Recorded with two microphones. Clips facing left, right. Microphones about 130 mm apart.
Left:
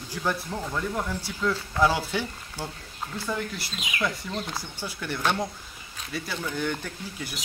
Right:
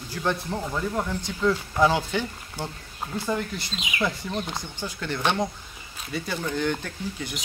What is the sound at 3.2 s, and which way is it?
Speech, centre (ahead or behind).